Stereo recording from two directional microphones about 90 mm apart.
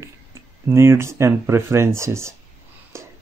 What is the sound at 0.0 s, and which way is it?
Speech, 30° right (ahead or behind).